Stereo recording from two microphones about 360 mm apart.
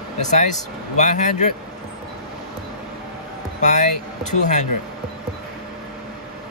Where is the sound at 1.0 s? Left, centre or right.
Centre.